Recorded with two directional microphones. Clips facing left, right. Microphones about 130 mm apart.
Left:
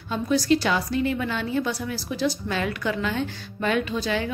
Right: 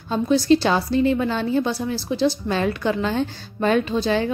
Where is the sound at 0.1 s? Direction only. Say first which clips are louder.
Right 4 dB; 30° right (ahead or behind).